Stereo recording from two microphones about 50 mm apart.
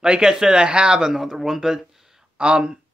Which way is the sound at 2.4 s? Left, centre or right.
Centre.